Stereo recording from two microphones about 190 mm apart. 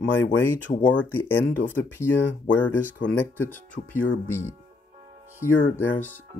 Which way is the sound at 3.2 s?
10° left (ahead or behind).